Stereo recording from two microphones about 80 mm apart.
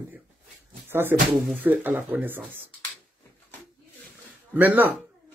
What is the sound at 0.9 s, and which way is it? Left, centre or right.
Speech, right.